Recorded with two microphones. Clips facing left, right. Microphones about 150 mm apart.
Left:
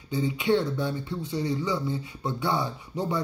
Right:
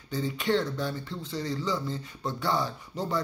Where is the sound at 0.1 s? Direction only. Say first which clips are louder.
Left 3 dB; 20° left (ahead or behind).